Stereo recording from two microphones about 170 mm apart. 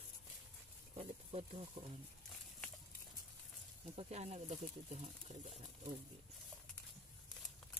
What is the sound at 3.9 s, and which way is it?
Speech, 40° right (ahead or behind).